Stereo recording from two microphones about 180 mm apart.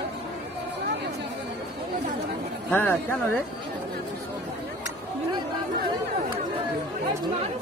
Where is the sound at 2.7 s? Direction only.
10° left (ahead or behind).